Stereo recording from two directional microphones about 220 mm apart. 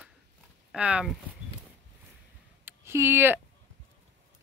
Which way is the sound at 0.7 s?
5° right (ahead or behind).